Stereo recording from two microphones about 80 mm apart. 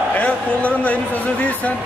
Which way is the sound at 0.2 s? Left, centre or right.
Centre.